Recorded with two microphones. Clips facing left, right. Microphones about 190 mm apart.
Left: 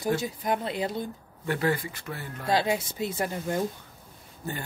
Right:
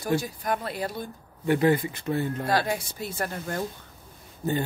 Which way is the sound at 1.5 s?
20° right (ahead or behind).